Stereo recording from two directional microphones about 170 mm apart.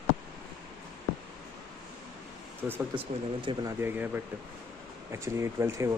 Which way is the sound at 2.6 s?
10° right (ahead or behind).